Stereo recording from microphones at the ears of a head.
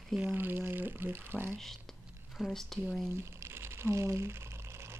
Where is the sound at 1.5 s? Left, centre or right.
Centre.